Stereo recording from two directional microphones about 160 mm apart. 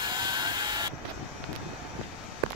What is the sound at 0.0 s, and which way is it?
Printer, 25° right (ahead or behind).